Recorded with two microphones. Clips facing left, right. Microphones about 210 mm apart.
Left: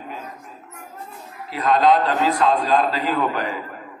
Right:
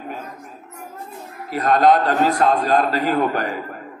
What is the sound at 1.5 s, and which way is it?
A man's voice, 45° right (ahead or behind).